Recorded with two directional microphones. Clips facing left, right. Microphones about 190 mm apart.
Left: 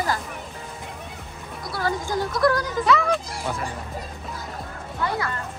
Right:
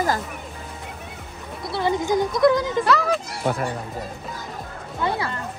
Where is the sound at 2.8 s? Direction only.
Centre (ahead or behind).